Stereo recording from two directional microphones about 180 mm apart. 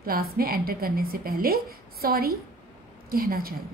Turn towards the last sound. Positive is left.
turn(degrees=-55)  # may be behind; listen again after turning